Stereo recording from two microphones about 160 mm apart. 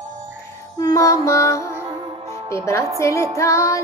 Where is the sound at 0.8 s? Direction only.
20° left (ahead or behind).